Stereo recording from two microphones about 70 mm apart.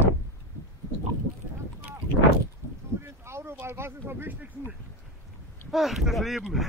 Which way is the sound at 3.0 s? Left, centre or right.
Right.